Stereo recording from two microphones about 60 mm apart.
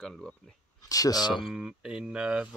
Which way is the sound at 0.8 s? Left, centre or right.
Left.